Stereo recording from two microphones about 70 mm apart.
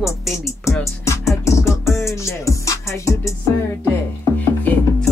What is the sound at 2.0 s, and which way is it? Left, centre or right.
Speech, left.